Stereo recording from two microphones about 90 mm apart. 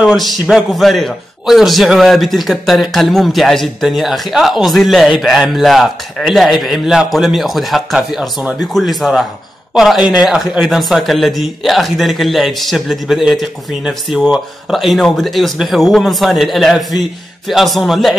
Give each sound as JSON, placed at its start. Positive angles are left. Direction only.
{"t": 0.0, "sound": "a man's voice", "side_deg": 0}